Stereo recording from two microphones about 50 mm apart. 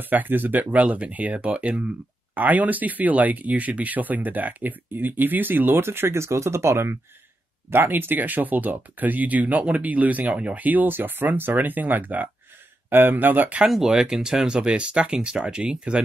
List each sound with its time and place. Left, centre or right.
0.0 s speech: right
5.9 s speech: right
7.7 s speech: right
13.7 s speech: centre